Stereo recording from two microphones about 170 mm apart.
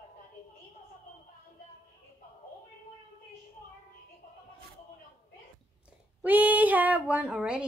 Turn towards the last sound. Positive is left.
turn(degrees=-5)  # may be behind; listen again after turning